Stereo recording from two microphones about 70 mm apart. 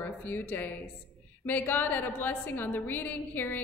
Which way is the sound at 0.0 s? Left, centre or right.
Left.